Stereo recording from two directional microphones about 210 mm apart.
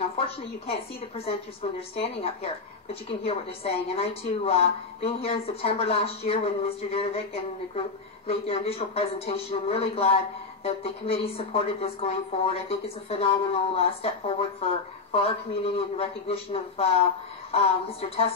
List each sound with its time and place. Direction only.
0.2 s speech: 25° left (ahead or behind)
8.3 s speech: 25° left (ahead or behind)